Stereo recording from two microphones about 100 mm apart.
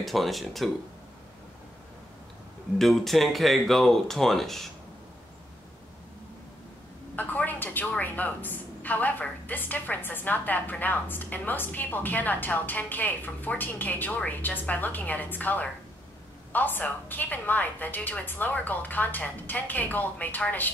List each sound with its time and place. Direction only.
0.0 s speech: centre (ahead or behind)
2.8 s speech: centre (ahead or behind)
7.2 s a woman's voice: 15° left (ahead or behind)